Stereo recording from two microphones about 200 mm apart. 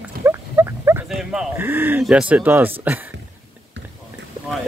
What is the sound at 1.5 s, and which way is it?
Speech, 10° right (ahead or behind).